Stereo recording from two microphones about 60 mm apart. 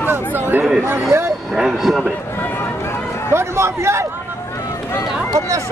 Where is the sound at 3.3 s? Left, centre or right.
Right.